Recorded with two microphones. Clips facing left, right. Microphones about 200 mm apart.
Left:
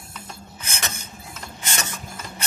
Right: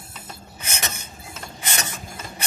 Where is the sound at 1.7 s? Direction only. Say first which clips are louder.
Even; 15° right (ahead or behind).